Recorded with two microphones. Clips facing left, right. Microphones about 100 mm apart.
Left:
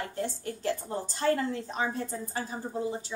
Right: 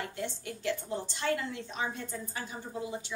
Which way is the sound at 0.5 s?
40° left (ahead or behind).